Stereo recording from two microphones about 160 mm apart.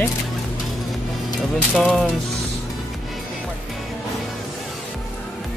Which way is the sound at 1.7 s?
Centre (ahead or behind).